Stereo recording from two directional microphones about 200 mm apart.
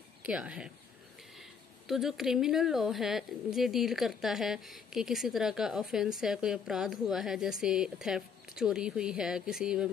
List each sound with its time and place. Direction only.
0.2 s a woman's voice: 5° right (ahead or behind)
1.9 s a woman's voice: centre (ahead or behind)